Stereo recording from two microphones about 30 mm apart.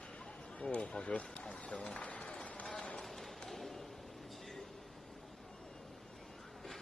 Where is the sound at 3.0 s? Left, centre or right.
Centre.